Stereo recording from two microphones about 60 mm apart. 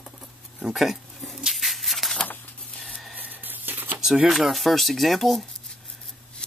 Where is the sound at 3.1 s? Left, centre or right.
Right.